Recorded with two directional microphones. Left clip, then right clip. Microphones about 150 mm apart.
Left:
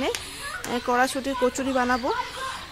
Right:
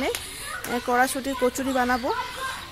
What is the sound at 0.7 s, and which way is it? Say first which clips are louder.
Speech: right 1 dB; 10° left (ahead or behind).